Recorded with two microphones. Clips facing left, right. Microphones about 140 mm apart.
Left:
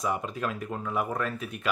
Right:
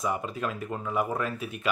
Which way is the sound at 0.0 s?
Centre (ahead or behind).